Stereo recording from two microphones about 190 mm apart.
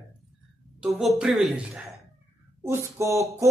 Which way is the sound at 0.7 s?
Centre (ahead or behind).